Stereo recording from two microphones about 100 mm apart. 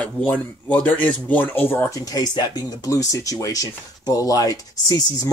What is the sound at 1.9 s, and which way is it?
Speech, 35° left (ahead or behind).